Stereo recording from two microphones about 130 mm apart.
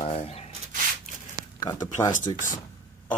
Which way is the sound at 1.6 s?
35° left (ahead or behind).